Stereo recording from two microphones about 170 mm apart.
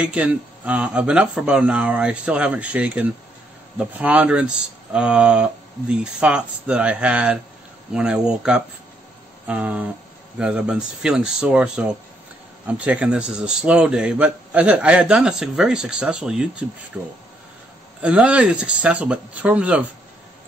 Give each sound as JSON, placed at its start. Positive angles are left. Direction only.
{"t": 0.0, "sound": "a man's voice", "side_deg": -5}